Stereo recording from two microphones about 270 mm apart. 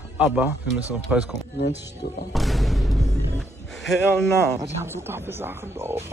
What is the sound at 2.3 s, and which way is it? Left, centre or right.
Music, centre.